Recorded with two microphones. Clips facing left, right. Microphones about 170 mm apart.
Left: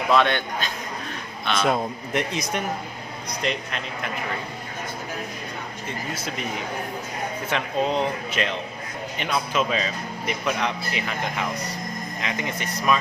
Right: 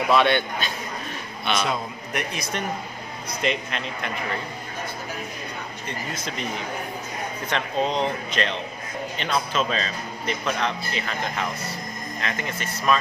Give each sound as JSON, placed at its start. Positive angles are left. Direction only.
{"t": 0.1, "sound": "speech", "side_deg": -5}
{"t": 2.1, "sound": "a man's voice", "side_deg": 20}
{"t": 3.4, "sound": "speech", "side_deg": 0}
{"t": 5.9, "sound": "speech", "side_deg": 5}
{"t": 7.4, "sound": "speech", "side_deg": 5}